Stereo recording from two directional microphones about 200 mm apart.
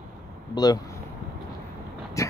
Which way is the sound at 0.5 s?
20° left (ahead or behind).